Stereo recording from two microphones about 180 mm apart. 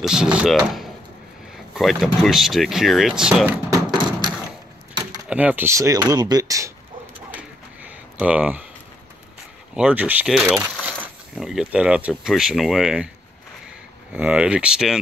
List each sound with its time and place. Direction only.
0.0 s speech: 5° right (ahead or behind)
3.7 s a sound: 25° right (ahead or behind)
5.3 s speech: 5° right (ahead or behind)
7.3 s a sound: 5° right (ahead or behind)
9.8 s speech: 10° right (ahead or behind)
14.1 s speech: 5° right (ahead or behind)